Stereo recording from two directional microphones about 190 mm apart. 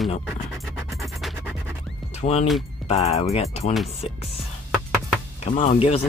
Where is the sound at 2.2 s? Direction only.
35° left (ahead or behind).